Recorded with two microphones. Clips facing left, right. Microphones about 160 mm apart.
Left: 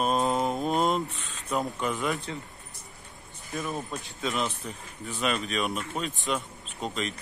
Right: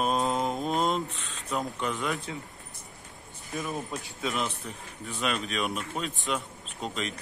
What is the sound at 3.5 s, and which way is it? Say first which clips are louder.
Speech: left 1 dB; centre (ahead or behind).